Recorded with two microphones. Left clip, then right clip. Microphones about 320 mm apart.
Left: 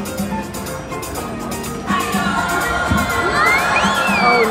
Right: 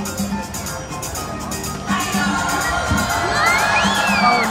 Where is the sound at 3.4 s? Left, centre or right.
Left.